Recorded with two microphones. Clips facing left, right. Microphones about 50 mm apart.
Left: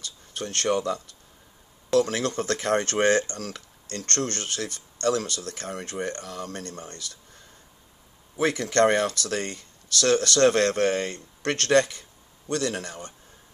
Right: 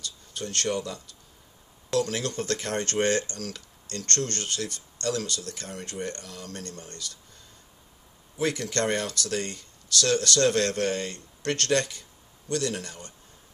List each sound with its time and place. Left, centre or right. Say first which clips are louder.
0.3 s speech: left 4 dB; left
8.4 s speech: left 6 dB; left